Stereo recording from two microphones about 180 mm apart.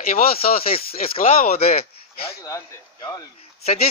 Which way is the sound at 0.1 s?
55° left (ahead or behind).